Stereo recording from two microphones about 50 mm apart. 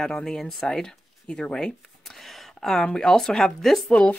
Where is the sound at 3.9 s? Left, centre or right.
Centre.